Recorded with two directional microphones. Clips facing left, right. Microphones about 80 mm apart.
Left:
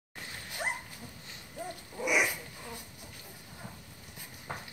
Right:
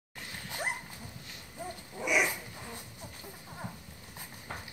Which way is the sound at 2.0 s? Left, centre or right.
Centre.